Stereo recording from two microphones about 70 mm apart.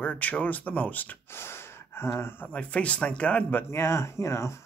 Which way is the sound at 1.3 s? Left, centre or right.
Left.